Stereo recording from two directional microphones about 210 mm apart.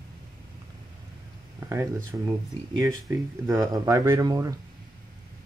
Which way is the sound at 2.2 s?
15° right (ahead or behind).